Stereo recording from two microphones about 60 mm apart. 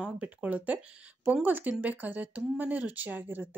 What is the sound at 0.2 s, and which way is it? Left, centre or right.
A woman's voice, right.